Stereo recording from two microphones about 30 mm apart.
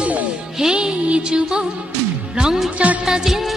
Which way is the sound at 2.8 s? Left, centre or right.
Right.